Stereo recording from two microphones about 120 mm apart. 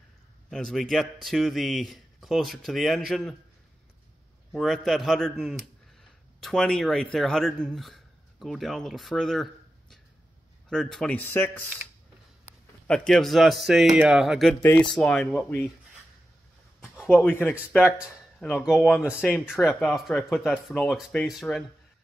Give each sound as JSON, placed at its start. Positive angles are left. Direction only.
{"t": 0.5, "sound": "a man's voice", "side_deg": 5}
{"t": 4.5, "sound": "a man's voice", "side_deg": 0}
{"t": 11.1, "sound": "speech", "side_deg": 15}
{"t": 12.8, "sound": "a man's voice", "side_deg": 5}
{"t": 14.5, "sound": "speech", "side_deg": 15}
{"t": 16.8, "sound": "a sound", "side_deg": -5}
{"t": 17.1, "sound": "speech", "side_deg": 15}
{"t": 17.8, "sound": "speech", "side_deg": -10}
{"t": 18.4, "sound": "speech", "side_deg": 5}
{"t": 18.9, "sound": "a man's voice", "side_deg": -10}